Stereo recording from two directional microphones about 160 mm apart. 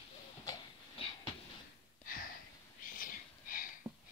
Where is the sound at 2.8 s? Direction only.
60° left (ahead or behind).